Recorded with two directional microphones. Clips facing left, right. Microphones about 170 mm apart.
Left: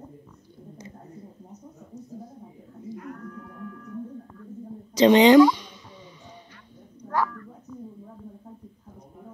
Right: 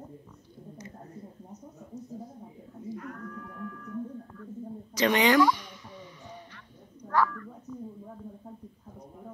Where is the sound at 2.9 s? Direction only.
25° left (ahead or behind).